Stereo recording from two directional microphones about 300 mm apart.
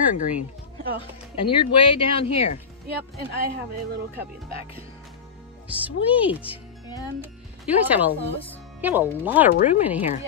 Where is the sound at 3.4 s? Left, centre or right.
Right.